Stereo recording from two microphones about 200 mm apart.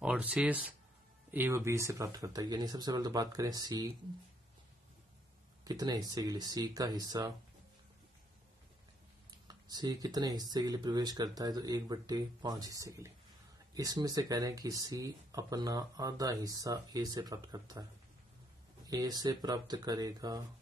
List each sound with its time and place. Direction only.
0.0 s speech: 5° right (ahead or behind)
5.6 s speech: 20° right (ahead or behind)
9.5 s speech: 20° right (ahead or behind)
18.9 s speech: 20° right (ahead or behind)